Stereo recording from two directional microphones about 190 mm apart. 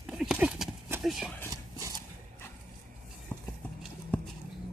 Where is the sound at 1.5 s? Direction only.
20° right (ahead or behind).